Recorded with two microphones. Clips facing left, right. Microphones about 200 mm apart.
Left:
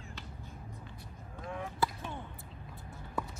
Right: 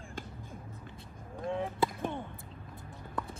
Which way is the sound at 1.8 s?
25° right (ahead or behind).